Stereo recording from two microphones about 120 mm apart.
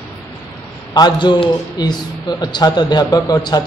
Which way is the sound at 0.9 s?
40° left (ahead or behind).